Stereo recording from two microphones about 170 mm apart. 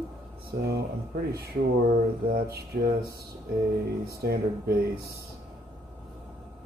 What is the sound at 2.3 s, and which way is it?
Speech, 65° right (ahead or behind).